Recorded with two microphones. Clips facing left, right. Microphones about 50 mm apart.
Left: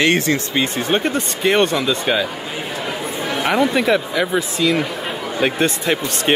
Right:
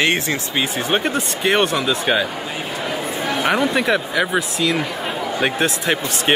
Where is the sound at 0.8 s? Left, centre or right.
Centre.